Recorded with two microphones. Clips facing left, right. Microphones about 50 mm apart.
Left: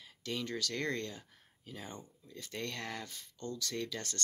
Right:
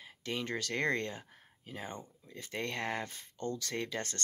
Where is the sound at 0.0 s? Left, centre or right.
Right.